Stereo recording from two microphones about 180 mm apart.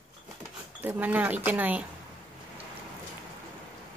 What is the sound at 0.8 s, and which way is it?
Speech, 10° right (ahead or behind).